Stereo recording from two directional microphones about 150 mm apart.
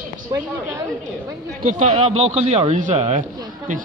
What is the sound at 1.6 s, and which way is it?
A man's voice, 50° right (ahead or behind).